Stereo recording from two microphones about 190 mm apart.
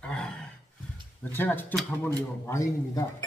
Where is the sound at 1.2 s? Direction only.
10° left (ahead or behind).